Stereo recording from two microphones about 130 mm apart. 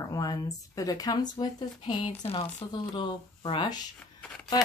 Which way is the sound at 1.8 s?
40° left (ahead or behind).